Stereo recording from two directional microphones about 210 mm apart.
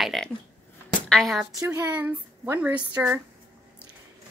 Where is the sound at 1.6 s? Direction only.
10° right (ahead or behind).